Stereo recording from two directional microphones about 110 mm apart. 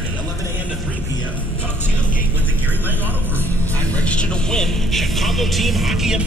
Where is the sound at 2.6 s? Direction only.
15° right (ahead or behind).